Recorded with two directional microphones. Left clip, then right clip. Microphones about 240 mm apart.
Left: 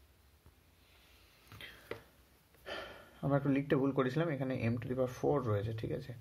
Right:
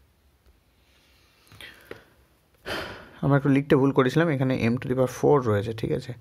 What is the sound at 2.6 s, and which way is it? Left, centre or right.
Speech, right.